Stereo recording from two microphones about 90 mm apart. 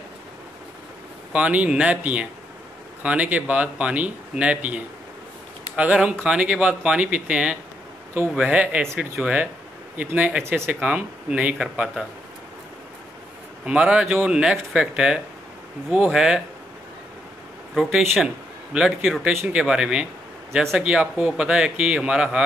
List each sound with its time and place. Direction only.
1.3 s speech: 15° right (ahead or behind)
6.2 s speech: 10° right (ahead or behind)
10.4 s speech: 30° right (ahead or behind)
10.7 s speech: 15° right (ahead or behind)
13.7 s speech: 10° right (ahead or behind)
17.7 s a man's voice: centre (ahead or behind)